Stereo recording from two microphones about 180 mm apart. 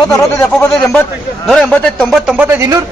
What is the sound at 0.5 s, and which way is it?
A man's voice, 5° left (ahead or behind).